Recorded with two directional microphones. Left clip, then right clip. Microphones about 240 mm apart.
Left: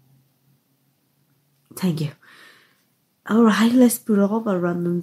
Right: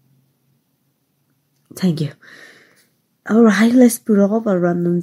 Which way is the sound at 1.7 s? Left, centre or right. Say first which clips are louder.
Right 5 dB; centre.